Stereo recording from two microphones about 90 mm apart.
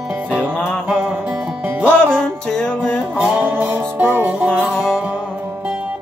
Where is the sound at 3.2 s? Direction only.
20° right (ahead or behind).